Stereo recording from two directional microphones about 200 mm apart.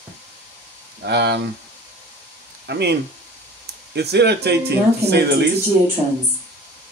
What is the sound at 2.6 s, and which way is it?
Speech, 55° right (ahead or behind).